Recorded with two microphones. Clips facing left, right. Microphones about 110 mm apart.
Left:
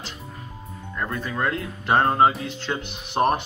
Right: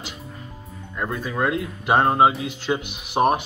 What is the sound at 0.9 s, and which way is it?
Speech, 10° right (ahead or behind).